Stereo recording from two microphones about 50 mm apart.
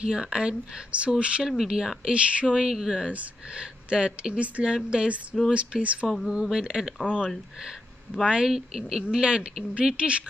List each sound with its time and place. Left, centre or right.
0.0 s speech: centre
3.1 s speech: right
6.0 s speech: centre
6.5 s speech: centre